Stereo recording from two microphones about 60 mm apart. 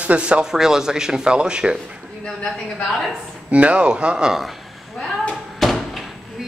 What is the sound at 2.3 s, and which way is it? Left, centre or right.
Speech, centre.